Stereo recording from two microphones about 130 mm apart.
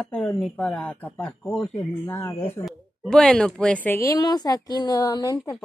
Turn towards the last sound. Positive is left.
turn(degrees=30)  # may be behind; listen again after turning